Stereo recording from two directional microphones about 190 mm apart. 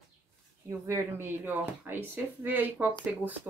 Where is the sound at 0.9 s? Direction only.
15° right (ahead or behind).